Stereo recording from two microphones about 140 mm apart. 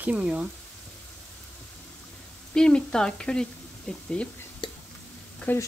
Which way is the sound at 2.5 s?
5° left (ahead or behind).